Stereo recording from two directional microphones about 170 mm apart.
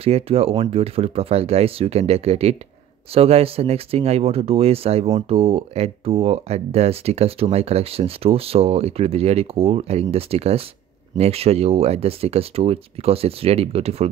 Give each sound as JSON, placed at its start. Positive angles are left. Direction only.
{"t": 0.0, "sound": "speech", "side_deg": -35}